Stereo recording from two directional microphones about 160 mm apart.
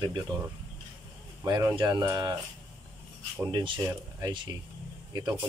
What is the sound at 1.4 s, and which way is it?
Speech, 20° right (ahead or behind).